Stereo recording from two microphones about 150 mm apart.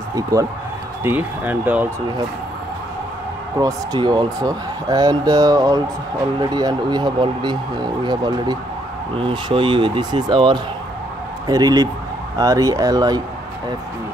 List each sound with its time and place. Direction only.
0.1 s speech: 20° right (ahead or behind)
1.0 s speech: 10° right (ahead or behind)
3.5 s speech: 25° right (ahead or behind)